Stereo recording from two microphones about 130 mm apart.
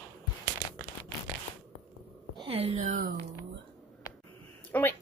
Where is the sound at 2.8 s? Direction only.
70° right (ahead or behind).